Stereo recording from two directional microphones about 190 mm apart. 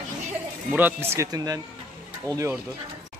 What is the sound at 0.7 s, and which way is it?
Speech, 10° right (ahead or behind).